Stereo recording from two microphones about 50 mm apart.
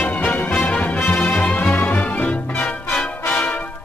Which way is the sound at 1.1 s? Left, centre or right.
Left.